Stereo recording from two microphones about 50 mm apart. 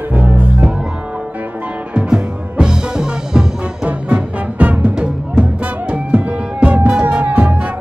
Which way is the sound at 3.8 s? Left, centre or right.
Right.